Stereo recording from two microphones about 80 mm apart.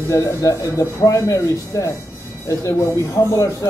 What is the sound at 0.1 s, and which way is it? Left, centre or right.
Speech, left.